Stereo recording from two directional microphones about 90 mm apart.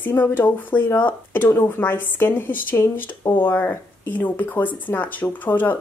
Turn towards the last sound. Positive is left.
turn(degrees=20)  # may be behind; listen again after turning